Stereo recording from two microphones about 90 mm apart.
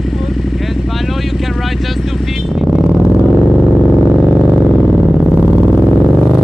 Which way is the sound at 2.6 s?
Centre (ahead or behind).